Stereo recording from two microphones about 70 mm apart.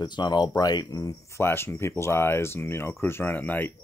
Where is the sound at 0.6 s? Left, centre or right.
Left.